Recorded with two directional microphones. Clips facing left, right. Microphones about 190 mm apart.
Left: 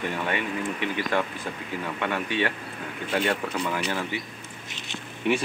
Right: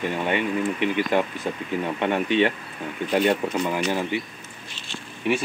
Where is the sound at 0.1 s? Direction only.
15° right (ahead or behind).